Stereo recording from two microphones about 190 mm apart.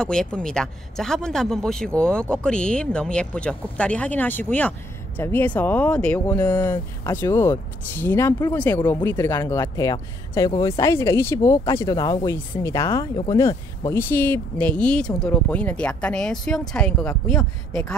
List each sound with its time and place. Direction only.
0.0 s speech: 5° left (ahead or behind)